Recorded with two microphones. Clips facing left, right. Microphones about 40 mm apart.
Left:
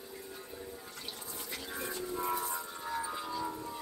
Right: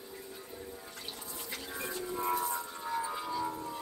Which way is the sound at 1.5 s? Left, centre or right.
Centre.